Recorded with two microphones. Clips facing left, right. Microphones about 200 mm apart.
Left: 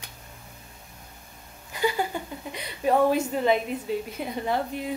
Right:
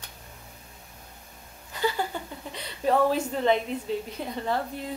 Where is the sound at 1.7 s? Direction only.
15° left (ahead or behind).